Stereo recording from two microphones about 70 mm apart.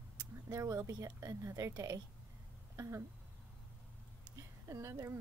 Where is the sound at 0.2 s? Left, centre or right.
Right.